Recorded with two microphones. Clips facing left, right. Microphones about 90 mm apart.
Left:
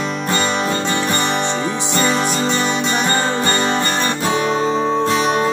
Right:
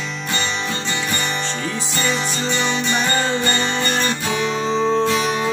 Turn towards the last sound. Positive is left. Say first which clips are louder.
# left 3 dB
turn(degrees=40)  # may be behind; listen again after turning